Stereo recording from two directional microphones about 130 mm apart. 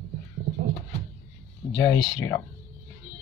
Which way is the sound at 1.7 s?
25° left (ahead or behind).